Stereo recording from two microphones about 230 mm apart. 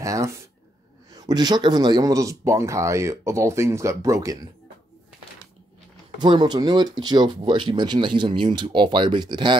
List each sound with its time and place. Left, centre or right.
0.0 s speech: centre
6.1 s speech: centre